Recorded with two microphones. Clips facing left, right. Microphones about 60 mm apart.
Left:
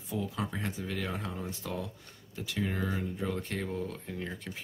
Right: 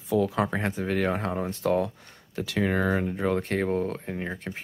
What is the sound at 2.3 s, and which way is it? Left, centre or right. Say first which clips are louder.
Speech: right 8 dB; right.